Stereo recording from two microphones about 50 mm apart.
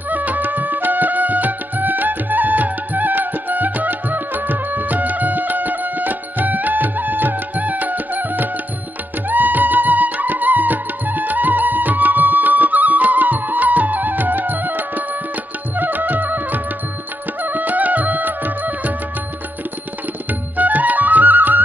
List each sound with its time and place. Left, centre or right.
0.1 s music: right
20.2 s music: right